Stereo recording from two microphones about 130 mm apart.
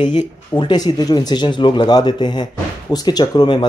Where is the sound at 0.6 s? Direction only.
35° left (ahead or behind).